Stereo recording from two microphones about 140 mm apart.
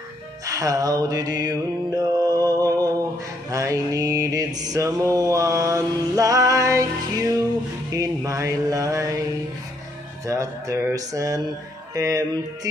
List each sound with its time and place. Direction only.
0.5 s mantra: 25° right (ahead or behind)
3.4 s a sound: 25° right (ahead or behind)
4.6 s mantra: 25° right (ahead or behind)
7.9 s mantra: 25° right (ahead or behind)
10.2 s mantra: 25° right (ahead or behind)